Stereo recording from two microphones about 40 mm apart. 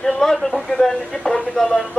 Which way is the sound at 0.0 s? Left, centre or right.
Centre.